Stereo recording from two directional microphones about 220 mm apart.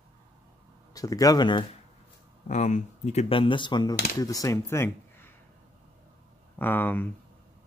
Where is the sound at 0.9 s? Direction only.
15° left (ahead or behind).